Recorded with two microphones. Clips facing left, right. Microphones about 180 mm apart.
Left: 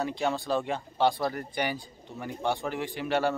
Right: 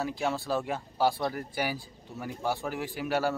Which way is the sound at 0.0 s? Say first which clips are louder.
Left 2 dB; centre (ahead or behind).